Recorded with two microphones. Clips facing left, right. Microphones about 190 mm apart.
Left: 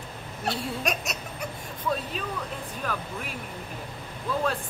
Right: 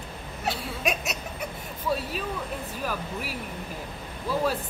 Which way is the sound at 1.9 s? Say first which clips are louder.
Right 1 dB; 10° right (ahead or behind).